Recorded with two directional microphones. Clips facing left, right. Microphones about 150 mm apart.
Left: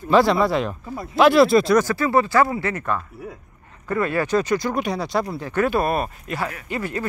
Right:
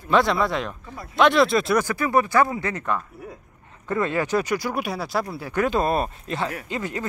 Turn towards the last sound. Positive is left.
turn(degrees=-15)  # may be behind; listen again after turning